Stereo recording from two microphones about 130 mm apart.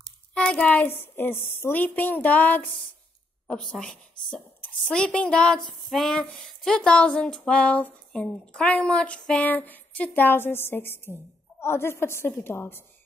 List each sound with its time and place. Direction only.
0.0 s a woman's voice: 5° left (ahead or behind)